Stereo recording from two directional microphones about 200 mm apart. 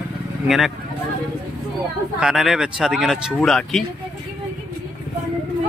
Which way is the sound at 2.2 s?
Centre (ahead or behind).